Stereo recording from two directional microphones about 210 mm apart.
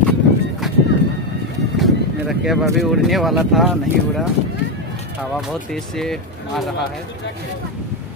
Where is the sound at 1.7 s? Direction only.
Centre (ahead or behind).